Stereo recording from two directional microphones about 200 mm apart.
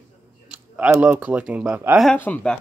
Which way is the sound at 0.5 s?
5° right (ahead or behind).